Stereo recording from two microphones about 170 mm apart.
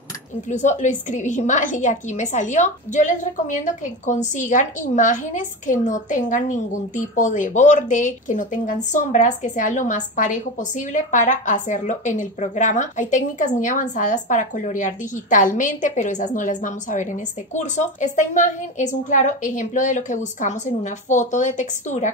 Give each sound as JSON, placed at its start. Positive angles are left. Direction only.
{"t": 0.5, "sound": "a woman's voice", "side_deg": 45}